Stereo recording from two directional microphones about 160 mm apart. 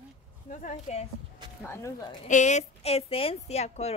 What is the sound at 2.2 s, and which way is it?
A woman's voice, 50° left (ahead or behind).